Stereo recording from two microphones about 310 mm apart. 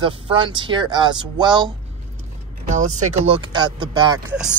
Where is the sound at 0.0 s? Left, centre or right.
Centre.